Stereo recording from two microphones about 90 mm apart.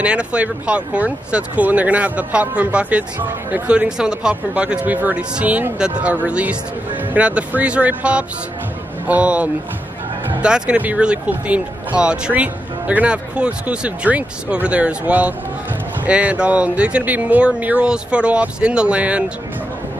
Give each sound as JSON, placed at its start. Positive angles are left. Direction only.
{"t": 0.0, "sound": "speech", "side_deg": -15}